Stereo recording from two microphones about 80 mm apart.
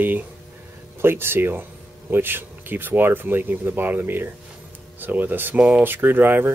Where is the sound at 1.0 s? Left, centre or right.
Right.